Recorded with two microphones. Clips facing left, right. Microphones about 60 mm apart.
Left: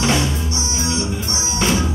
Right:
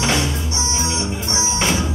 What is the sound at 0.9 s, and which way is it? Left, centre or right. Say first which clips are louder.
Music: left 1 dB; right.